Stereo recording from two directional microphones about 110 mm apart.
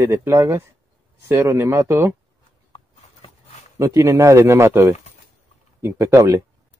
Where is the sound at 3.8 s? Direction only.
30° right (ahead or behind).